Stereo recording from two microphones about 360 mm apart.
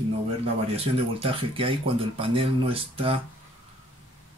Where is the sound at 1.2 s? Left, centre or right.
Centre.